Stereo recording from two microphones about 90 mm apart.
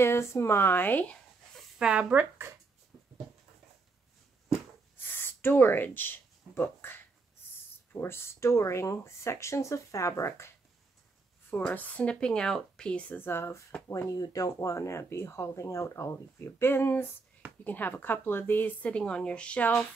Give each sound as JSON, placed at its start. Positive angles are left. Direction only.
{"t": 0.0, "sound": "a woman's voice", "side_deg": 30}
{"t": 1.8, "sound": "speech", "side_deg": -10}
{"t": 4.9, "sound": "a sound", "side_deg": 25}
{"t": 7.9, "sound": "speech", "side_deg": 25}
{"t": 11.5, "sound": "speech", "side_deg": 20}
{"t": 13.2, "sound": "a woman's voice", "side_deg": 25}
{"t": 14.1, "sound": "a woman's voice", "side_deg": 40}